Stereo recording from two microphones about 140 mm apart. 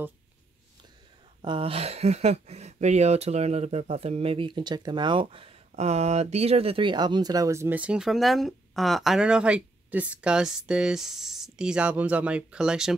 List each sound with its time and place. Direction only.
1.4 s speech: 40° right (ahead or behind); by 12.9 s 5° right (ahead or behind)